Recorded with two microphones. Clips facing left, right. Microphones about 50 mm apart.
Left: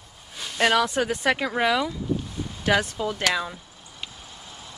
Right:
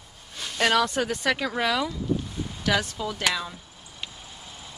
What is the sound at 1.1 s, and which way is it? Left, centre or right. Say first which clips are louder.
Speech: left 2 dB; centre.